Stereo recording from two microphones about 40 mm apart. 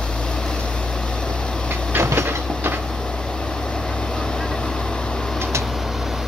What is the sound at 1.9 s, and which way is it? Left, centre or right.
Train, right.